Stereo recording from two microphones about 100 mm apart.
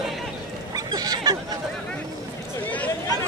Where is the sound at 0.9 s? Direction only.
40° right (ahead or behind).